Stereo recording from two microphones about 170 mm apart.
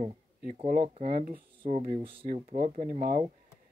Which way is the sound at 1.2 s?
55° right (ahead or behind).